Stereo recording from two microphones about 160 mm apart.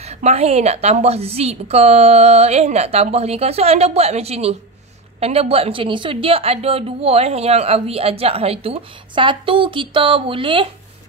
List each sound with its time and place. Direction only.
0.0 s a woman's voice: 45° right (ahead or behind)